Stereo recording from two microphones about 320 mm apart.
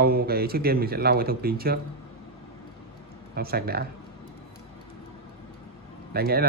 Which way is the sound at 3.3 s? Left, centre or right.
Right.